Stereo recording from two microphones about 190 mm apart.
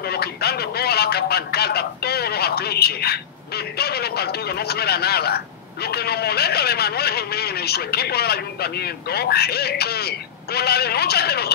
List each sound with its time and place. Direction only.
0.0 s speech: 55° left (ahead or behind)